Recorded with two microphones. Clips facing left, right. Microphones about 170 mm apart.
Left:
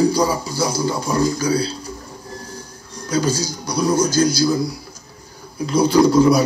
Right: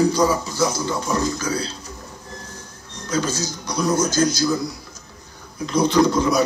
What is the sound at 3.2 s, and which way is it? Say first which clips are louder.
Speech: left 4 dB; 10° left (ahead or behind).